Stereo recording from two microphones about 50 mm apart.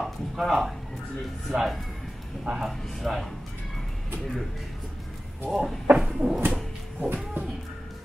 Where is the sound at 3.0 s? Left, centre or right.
Centre.